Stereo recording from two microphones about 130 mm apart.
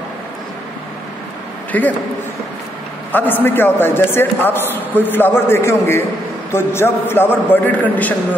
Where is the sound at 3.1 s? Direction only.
15° left (ahead or behind).